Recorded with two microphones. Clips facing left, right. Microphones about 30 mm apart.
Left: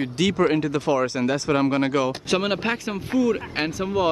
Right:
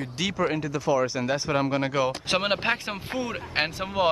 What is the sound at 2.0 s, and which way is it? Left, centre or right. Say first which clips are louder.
Speech: left 2 dB; centre.